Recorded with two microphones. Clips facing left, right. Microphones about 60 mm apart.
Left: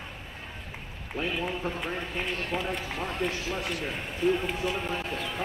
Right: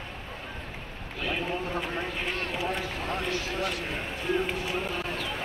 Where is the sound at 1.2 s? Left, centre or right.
Left.